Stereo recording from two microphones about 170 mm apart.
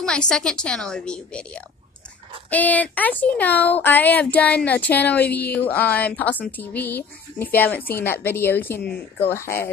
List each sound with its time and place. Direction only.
0.0 s a woman's voice: 5° left (ahead or behind)